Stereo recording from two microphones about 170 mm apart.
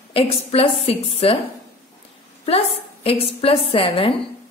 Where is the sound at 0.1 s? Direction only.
35° left (ahead or behind).